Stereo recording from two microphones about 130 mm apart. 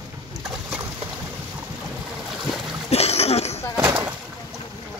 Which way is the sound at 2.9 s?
55° left (ahead or behind).